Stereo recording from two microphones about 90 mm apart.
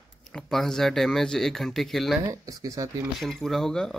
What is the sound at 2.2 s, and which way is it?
Speech, 40° right (ahead or behind).